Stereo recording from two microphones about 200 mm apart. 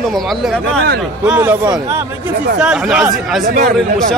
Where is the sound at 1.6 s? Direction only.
20° right (ahead or behind).